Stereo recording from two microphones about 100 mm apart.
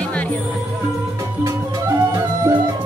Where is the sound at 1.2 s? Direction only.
30° right (ahead or behind).